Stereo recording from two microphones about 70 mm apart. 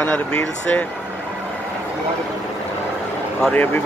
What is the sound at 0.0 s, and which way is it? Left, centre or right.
Speech, centre.